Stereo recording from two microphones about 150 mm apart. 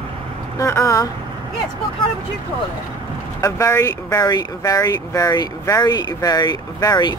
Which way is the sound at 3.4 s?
20° left (ahead or behind).